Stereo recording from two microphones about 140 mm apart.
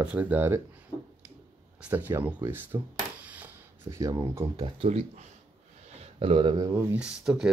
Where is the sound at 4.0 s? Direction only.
20° right (ahead or behind).